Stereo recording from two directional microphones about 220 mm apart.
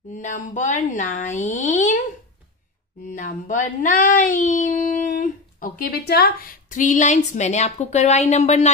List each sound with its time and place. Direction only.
0.1 s speech: 35° left (ahead or behind)
3.1 s speech: 35° left (ahead or behind)